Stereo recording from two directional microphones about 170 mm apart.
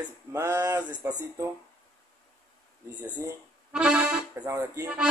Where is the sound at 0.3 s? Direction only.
15° right (ahead or behind).